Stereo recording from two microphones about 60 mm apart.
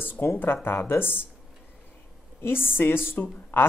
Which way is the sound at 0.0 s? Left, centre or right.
Left.